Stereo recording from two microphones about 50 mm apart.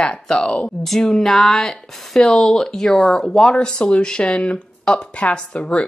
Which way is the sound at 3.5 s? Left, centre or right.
Centre.